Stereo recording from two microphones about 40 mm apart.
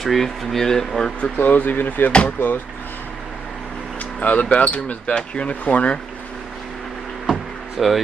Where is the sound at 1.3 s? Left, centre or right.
Left.